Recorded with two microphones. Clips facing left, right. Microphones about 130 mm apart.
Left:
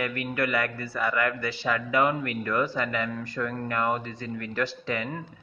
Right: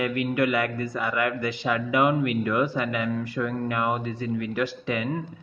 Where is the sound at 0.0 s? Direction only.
20° right (ahead or behind).